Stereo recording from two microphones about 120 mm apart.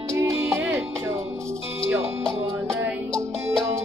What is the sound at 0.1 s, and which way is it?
Music, 25° right (ahead or behind).